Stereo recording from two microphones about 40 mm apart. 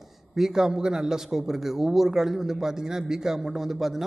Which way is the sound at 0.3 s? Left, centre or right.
Centre.